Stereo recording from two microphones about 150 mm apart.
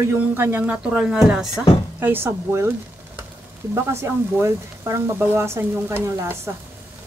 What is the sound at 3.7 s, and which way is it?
Speech, 15° right (ahead or behind).